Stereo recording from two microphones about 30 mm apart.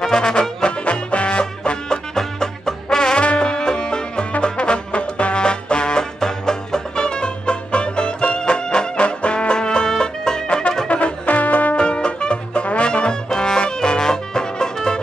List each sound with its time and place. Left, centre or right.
0.0 s brass instrument: left
0.8 s music: left
2.1 s music: centre
4.4 s trombone: left
6.1 s music: centre
9.0 s brass instrument: left
9.5 s music: left
10.9 s music: left
11.2 s music: left
11.7 s music: left
13.1 s music: left